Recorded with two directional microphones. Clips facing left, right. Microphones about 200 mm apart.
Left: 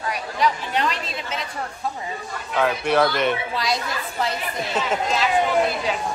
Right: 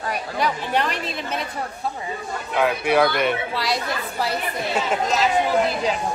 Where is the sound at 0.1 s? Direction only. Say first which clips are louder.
Left 1 dB; 55° right (ahead or behind).